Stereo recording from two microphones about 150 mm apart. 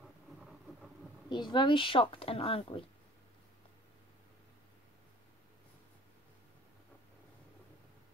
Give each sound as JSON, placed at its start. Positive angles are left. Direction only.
{"t": 1.3, "sound": "speech", "side_deg": 30}